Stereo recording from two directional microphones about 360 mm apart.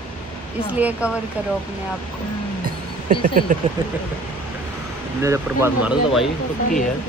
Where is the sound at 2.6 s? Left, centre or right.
Right.